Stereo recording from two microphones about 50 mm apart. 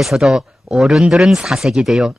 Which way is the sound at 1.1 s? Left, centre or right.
Centre.